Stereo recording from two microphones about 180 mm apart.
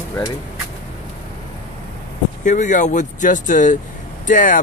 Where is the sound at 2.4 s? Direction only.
45° left (ahead or behind).